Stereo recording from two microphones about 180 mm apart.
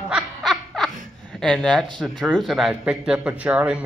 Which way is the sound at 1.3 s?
5° left (ahead or behind).